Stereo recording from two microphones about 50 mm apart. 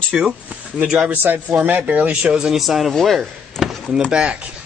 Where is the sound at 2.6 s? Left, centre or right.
Centre.